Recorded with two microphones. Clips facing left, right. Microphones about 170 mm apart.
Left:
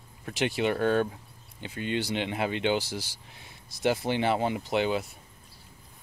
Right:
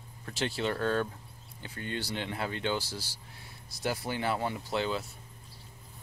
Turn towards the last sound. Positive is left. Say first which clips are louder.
# left 5 dB
turn(degrees=20)  # may be behind; listen again after turning